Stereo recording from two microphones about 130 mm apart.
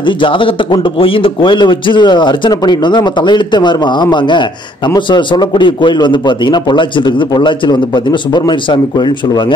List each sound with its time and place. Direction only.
0.0 s a man's voice: 40° left (ahead or behind)